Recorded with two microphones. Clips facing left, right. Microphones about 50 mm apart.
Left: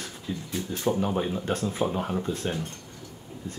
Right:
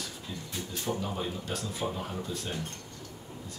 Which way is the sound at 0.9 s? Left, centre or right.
Left.